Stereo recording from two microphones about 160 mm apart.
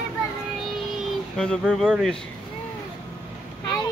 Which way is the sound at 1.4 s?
5° left (ahead or behind).